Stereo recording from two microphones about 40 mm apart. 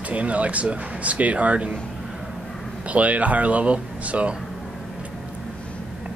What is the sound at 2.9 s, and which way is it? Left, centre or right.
Speech, right.